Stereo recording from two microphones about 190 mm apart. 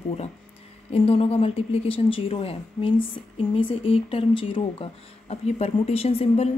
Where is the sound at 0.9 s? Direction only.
30° left (ahead or behind).